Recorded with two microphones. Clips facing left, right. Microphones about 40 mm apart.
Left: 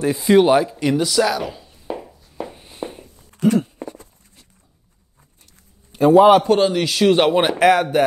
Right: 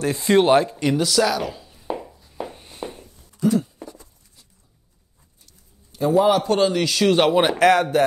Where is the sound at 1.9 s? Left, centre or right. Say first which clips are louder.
Even; centre.